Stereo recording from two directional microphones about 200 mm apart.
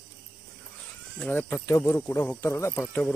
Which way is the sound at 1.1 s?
5° left (ahead or behind).